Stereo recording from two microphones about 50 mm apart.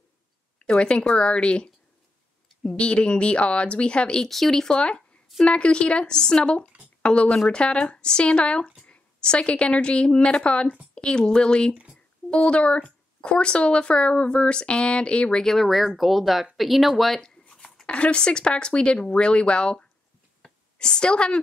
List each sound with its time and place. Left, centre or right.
0.6 s speech: centre
4.3 s speech: centre
4.7 s a woman's voice: left
11.7 s speech: right
12.3 s speech: left
15.5 s speech: centre
16.5 s a sound: centre
17.8 s speech: left
20.4 s a sound: centre